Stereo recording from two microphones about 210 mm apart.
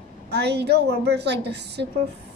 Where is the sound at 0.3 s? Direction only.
50° right (ahead or behind).